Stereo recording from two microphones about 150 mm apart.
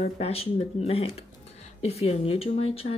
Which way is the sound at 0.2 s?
40° left (ahead or behind).